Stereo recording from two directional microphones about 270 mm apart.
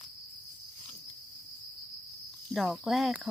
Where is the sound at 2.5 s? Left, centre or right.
Centre.